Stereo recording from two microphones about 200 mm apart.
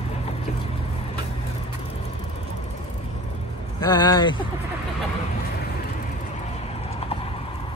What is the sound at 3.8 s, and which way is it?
Speech, 20° left (ahead or behind).